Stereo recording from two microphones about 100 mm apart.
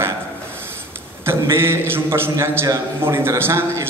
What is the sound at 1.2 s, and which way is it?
A man's voice, 25° right (ahead or behind).